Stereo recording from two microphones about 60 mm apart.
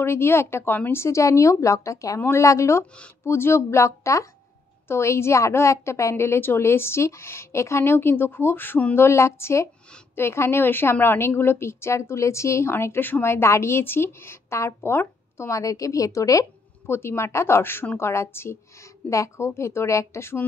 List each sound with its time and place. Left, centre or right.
0.0 s a woman's voice: left
3.3 s a woman's voice: left
8.9 s a woman's voice: left
15.5 s a woman's voice: left
16.8 s a woman's voice: left
19.0 s a woman's voice: left